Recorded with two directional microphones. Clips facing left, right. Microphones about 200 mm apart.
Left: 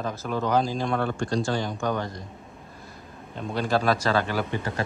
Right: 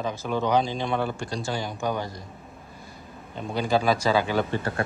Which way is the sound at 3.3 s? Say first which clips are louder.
Right 1 dB; centre (ahead or behind).